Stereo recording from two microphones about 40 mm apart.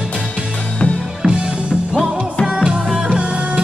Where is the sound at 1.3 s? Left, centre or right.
Right.